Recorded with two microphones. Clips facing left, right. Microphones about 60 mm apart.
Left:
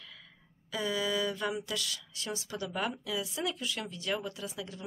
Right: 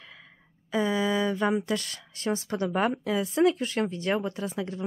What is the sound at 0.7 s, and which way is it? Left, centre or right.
Speech, right.